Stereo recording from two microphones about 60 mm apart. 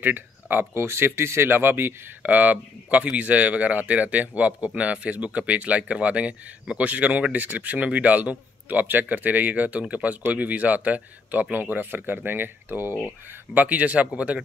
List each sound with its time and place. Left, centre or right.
0.0 s speech: right
2.2 s speech: right